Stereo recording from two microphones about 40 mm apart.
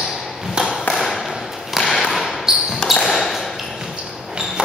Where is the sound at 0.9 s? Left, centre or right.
Centre.